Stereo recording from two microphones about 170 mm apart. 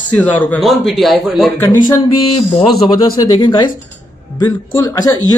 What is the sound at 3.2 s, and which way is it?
Speech, 25° left (ahead or behind).